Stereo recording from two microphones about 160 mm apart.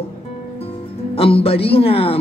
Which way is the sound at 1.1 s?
35° left (ahead or behind).